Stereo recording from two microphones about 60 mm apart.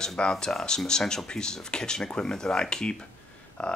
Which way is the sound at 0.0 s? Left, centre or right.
Centre.